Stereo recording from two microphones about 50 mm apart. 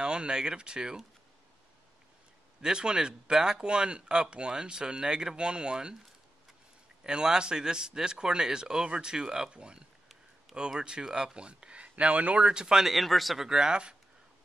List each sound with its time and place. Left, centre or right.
0.0 s speech: centre
2.6 s speech: centre
7.0 s speech: centre
12.8 s speech: centre
13.5 s speech: centre